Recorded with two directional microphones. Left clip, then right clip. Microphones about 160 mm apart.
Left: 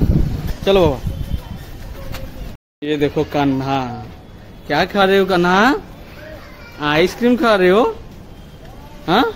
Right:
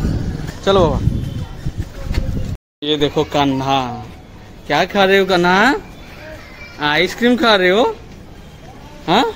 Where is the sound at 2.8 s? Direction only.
10° left (ahead or behind).